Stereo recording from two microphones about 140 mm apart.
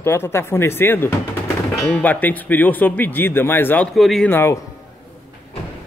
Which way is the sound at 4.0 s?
Centre (ahead or behind).